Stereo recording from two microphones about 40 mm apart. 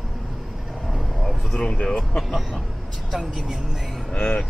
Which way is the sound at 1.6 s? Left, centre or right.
Left.